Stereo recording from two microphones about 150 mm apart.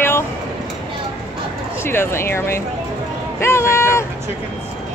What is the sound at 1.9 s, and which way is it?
Speech, 15° left (ahead or behind).